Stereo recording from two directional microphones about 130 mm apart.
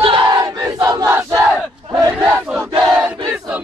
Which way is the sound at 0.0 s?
40° right (ahead or behind).